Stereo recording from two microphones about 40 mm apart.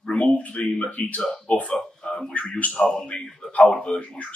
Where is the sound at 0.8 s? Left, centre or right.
Left.